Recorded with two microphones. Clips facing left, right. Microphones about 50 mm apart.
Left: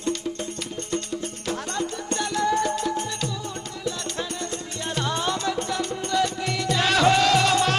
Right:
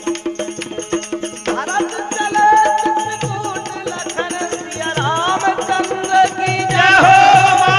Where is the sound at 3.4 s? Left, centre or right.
Right.